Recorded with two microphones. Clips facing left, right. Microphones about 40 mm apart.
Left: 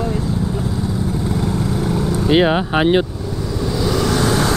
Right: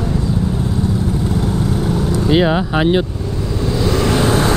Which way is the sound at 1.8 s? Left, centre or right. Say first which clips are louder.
Right 1 dB; centre.